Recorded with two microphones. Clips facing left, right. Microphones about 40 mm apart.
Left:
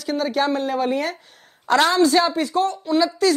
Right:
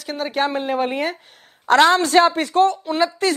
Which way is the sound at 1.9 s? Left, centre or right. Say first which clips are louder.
Right 2 dB; right.